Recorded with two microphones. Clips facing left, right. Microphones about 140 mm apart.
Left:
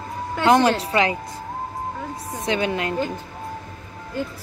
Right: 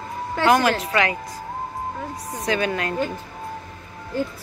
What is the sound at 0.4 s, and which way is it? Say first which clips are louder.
Speech: left 1 dB; 25° left (ahead or behind).